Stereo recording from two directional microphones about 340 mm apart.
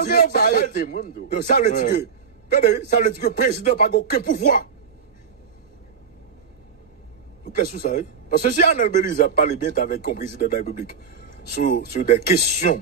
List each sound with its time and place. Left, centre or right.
0.0 s a man's voice: left
7.5 s a man's voice: left